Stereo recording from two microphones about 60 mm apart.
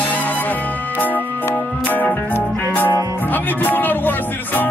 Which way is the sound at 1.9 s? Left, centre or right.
Left.